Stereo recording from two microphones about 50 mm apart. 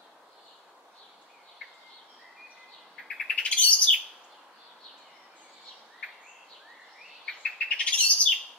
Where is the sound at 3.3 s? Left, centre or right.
Left.